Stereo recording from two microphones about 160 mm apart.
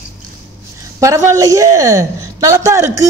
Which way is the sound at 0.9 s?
20° right (ahead or behind).